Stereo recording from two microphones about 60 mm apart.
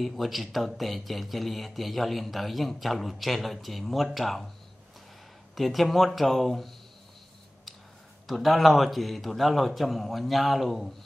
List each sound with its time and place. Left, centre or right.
0.0 s speech: centre
5.5 s speech: centre
8.3 s speech: centre